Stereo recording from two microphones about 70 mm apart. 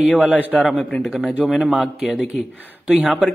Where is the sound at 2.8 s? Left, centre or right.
Centre.